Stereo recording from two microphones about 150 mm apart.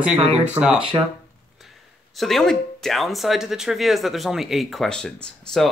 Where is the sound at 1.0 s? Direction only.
30° right (ahead or behind).